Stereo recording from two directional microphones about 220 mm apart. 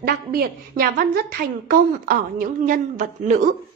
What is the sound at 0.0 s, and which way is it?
A woman's voice, 40° right (ahead or behind).